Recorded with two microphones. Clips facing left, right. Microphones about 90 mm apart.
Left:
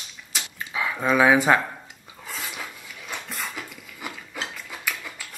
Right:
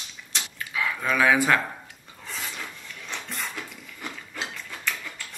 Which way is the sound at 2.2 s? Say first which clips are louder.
Left 1 dB; 5° left (ahead or behind).